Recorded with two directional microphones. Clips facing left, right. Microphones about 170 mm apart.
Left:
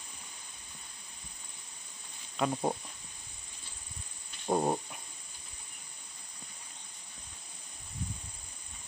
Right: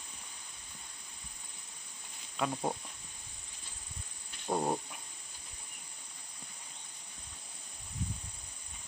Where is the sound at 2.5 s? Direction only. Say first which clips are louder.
Left 4 dB; 15° left (ahead or behind).